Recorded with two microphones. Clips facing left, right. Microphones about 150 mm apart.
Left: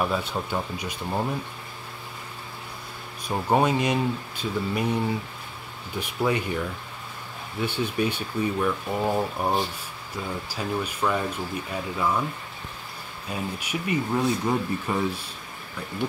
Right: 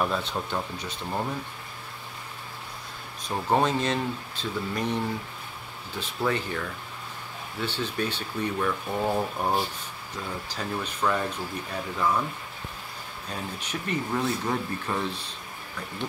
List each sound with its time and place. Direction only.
0.0 s speech: 5° left (ahead or behind)
3.3 s speech: 10° left (ahead or behind)
7.6 s speech: 10° left (ahead or behind)
13.3 s speech: 10° left (ahead or behind)